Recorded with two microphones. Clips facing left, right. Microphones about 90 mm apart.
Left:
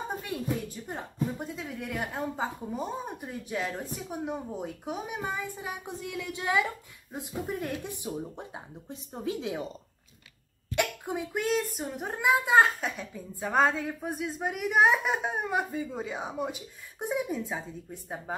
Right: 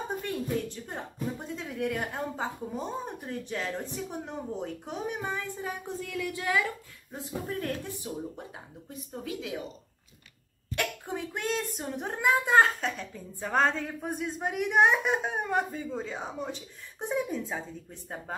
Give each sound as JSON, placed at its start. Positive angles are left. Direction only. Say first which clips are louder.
{"t": 0.2, "sound": "a woman's voice", "louder": "right 1 dB", "side_deg": 5}
{"t": 10.8, "sound": "speech", "louder": "left 3 dB", "side_deg": 10}